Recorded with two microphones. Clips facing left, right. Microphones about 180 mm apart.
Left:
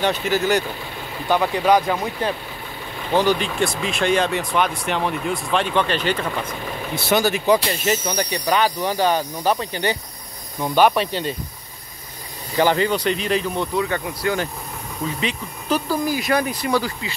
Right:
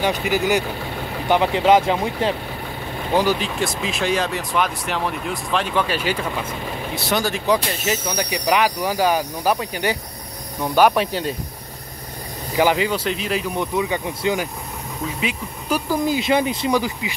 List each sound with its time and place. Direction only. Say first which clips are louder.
0.0 s speech: even; 15° right (ahead or behind)
3.1 s speech: left 1 dB; 10° right (ahead or behind)
7.1 s speech: left 3 dB; 5° left (ahead or behind)
12.5 s speech: even; 10° right (ahead or behind)
13.6 s speech: even; 15° right (ahead or behind)
16.0 s speech: right 2 dB; 20° right (ahead or behind)